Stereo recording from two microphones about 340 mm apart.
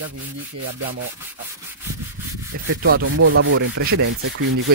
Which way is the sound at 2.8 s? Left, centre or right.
Right.